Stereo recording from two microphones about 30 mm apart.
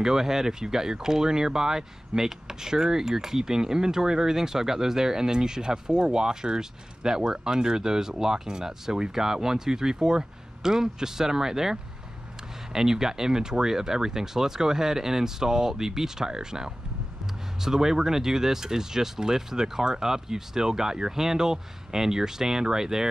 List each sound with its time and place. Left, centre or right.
0.0 s speech: centre